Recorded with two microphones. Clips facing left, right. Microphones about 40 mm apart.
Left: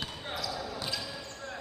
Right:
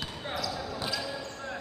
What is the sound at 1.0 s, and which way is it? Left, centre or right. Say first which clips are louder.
Basketball bounce: right 4 dB; centre.